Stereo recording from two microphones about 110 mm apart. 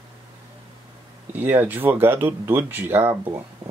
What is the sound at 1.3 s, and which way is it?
Speech, 20° right (ahead or behind).